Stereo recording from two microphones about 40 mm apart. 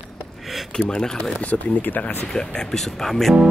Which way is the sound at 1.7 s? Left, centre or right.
Left.